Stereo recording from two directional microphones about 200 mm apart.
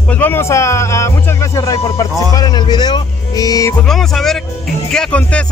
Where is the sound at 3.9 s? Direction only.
Centre (ahead or behind).